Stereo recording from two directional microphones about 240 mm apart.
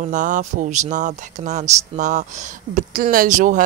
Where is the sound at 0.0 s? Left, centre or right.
Right.